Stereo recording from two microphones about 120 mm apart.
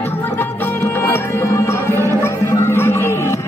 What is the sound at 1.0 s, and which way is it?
Music, 20° left (ahead or behind).